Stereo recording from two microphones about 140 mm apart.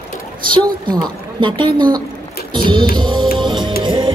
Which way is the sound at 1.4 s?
35° right (ahead or behind).